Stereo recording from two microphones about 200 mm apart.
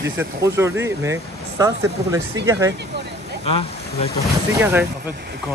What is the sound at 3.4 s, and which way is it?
Speech, 30° left (ahead or behind).